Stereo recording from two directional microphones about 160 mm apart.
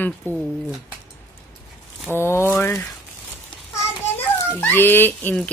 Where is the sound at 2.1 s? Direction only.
15° left (ahead or behind).